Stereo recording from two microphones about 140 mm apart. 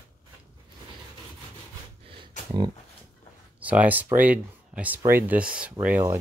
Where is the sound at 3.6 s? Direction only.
10° right (ahead or behind).